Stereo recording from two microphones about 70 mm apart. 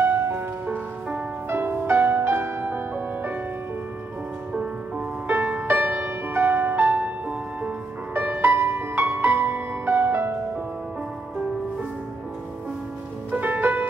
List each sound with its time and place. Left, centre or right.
0.0 s music: right
5.3 s music: right
13.3 s music: right